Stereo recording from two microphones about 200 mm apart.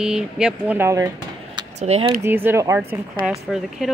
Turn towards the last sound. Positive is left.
turn(degrees=0)  # may be behind; listen again after turning